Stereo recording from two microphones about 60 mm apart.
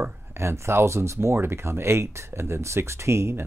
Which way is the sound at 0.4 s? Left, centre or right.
Right.